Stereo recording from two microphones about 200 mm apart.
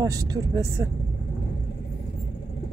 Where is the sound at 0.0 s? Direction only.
15° right (ahead or behind).